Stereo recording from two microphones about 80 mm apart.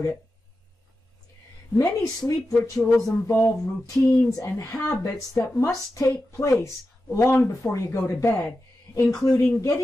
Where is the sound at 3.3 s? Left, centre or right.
Left.